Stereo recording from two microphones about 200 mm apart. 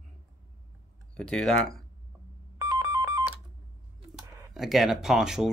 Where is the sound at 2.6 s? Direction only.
15° right (ahead or behind).